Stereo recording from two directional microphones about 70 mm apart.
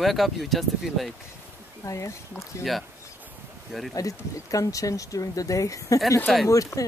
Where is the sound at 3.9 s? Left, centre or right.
Left.